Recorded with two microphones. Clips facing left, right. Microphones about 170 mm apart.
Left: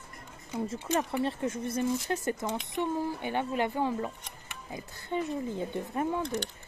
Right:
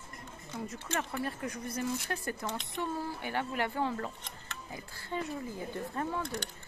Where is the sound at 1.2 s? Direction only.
25° left (ahead or behind).